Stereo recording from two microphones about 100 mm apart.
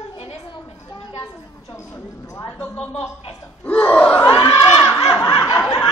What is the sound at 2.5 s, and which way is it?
Speech, 10° left (ahead or behind).